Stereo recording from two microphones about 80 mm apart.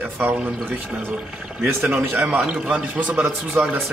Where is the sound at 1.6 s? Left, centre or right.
Right.